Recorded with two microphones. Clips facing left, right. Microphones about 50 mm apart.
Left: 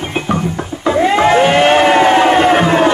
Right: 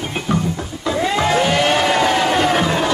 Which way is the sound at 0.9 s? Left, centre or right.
Left.